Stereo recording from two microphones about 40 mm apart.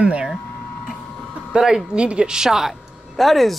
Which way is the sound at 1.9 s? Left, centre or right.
Right.